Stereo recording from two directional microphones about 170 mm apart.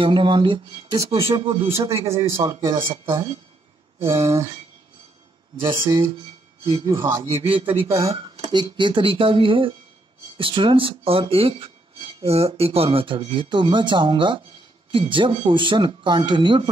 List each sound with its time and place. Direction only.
0.0 s speech: 30° right (ahead or behind)
2.0 s a man's voice: 15° right (ahead or behind)
5.6 s a man's voice: 25° right (ahead or behind)
7.4 s speech: 30° right (ahead or behind)
7.9 s speech: 20° right (ahead or behind)